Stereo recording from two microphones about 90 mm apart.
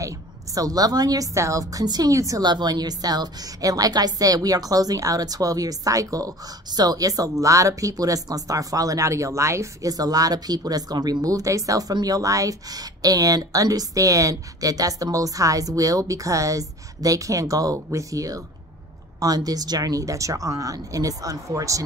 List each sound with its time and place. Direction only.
0.0 s a woman's voice: 40° right (ahead or behind)
2.4 s a woman's voice: 50° right (ahead or behind)